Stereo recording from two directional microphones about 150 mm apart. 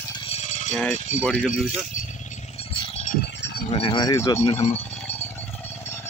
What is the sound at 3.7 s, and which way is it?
Speech, 35° left (ahead or behind).